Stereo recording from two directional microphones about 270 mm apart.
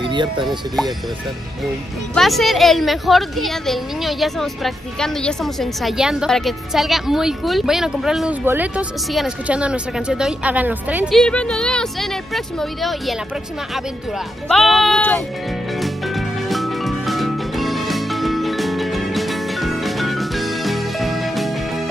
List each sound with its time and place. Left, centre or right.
0.0 s speech: centre
2.1 s a woman's voice: centre
15.7 s music: centre